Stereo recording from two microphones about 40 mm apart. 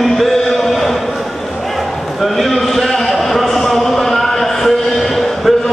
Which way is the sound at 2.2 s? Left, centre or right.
Centre.